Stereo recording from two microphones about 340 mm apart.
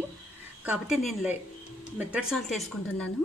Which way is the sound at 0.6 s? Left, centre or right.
Centre.